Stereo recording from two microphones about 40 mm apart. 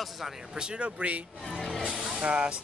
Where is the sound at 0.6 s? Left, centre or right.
Right.